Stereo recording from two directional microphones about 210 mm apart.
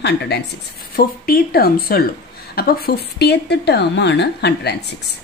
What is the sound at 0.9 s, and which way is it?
Speech, 45° left (ahead or behind).